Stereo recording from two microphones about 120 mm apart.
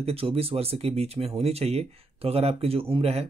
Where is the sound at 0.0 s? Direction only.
55° right (ahead or behind).